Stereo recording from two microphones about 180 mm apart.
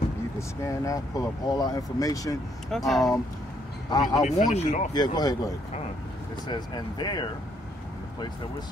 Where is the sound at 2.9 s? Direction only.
Centre (ahead or behind).